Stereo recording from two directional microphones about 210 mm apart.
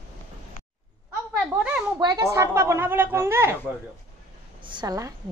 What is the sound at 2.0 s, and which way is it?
A woman's voice, 15° right (ahead or behind).